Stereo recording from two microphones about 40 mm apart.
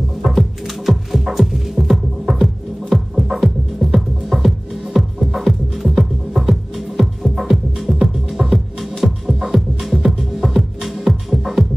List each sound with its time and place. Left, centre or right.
0.2 s music: centre